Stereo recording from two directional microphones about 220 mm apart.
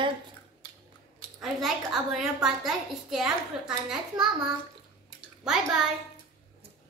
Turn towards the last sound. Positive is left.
turn(degrees=0)  # may be behind; listen again after turning